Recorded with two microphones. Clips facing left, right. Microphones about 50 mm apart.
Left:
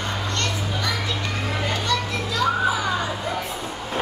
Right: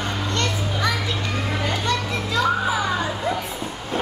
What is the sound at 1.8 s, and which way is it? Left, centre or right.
Children playing, right.